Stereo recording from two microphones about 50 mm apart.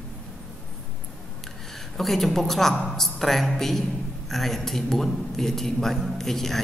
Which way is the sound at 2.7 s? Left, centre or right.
Centre.